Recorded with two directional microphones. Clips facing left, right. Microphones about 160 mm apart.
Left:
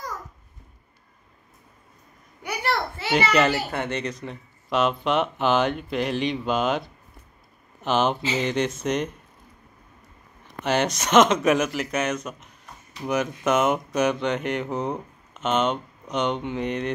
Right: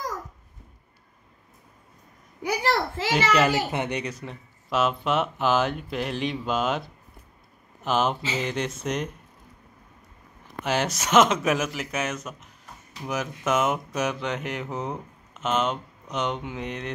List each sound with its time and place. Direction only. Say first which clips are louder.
2.6 s a child's voice: even; 90° right
3.7 s speech: even; 15° right (ahead or behind)
10.6 s speech: left 3 dB; 5° right (ahead or behind)